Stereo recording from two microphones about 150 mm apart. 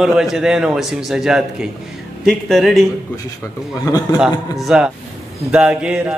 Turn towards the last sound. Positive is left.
turn(degrees=-5)  # may be behind; listen again after turning